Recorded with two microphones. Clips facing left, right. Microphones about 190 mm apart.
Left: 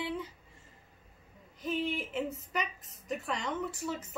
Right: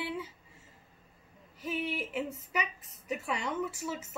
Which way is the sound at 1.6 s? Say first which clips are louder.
Left 1 dB; 5° right (ahead or behind).